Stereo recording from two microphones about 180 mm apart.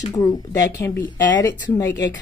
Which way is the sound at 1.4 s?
15° left (ahead or behind).